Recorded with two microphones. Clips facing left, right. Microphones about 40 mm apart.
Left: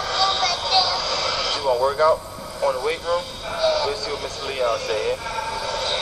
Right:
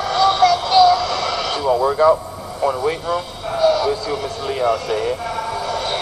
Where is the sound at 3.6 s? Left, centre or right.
Right.